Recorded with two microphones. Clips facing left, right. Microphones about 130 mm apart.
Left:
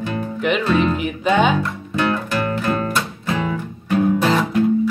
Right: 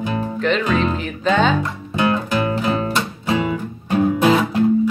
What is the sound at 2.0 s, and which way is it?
Music, 15° right (ahead or behind).